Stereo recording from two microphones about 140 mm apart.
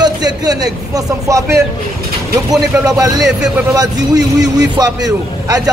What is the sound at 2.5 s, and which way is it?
A man's voice, 25° right (ahead or behind).